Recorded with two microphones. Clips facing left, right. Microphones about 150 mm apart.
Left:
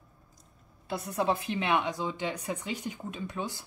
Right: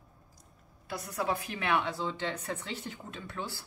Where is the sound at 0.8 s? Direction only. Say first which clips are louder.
Left 4 dB; 25° left (ahead or behind).